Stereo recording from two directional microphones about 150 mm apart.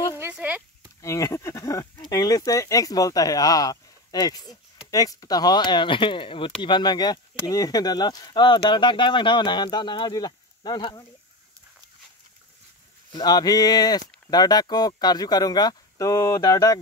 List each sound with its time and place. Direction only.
0.2 s speech: 10° right (ahead or behind)
1.0 s speech: 20° left (ahead or behind)
13.1 s speech: 25° left (ahead or behind)